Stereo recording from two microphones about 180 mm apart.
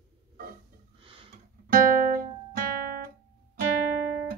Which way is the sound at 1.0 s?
30° right (ahead or behind).